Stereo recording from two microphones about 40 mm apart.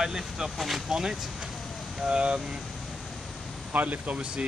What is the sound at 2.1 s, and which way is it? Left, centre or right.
Speech, right.